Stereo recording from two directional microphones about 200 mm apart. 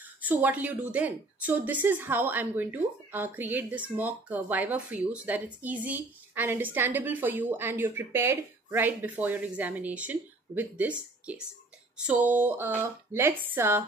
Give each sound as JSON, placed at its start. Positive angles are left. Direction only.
{"t": 0.0, "sound": "a woman's voice", "side_deg": -10}